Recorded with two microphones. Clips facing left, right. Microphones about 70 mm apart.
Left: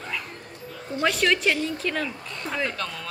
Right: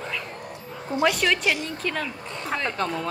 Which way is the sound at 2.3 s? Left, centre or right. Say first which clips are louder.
Right 3 dB; right.